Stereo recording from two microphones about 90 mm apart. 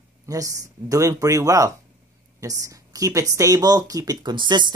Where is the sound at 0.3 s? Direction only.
40° right (ahead or behind).